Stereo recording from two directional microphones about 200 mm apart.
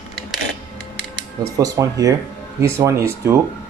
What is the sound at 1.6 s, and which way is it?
Speech, 15° right (ahead or behind).